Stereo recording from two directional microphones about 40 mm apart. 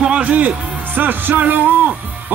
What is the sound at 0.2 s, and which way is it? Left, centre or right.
Speech, right.